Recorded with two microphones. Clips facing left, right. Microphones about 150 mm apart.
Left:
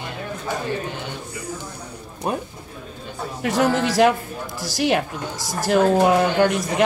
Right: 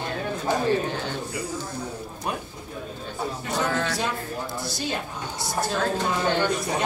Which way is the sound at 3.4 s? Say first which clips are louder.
Left 8 dB; 90° left.